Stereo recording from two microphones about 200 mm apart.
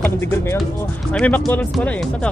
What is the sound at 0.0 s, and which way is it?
Speech, 10° left (ahead or behind).